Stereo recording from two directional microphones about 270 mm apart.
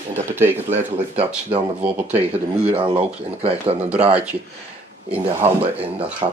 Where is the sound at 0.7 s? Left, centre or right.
Right.